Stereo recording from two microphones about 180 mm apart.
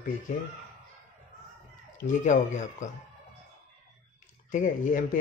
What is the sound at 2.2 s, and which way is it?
Speech, 45° left (ahead or behind).